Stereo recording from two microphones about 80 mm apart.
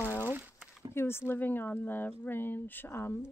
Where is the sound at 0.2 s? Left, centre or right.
Right.